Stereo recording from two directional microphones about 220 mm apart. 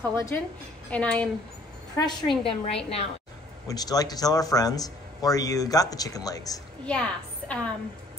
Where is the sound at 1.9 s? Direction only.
20° left (ahead or behind).